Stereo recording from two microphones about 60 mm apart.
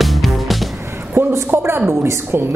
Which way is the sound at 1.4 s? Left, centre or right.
Right.